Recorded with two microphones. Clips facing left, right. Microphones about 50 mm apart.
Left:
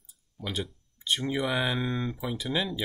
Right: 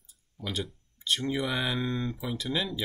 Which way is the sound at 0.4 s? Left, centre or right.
Centre.